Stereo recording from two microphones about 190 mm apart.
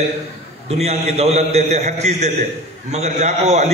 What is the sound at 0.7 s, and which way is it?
A man's voice, 35° right (ahead or behind).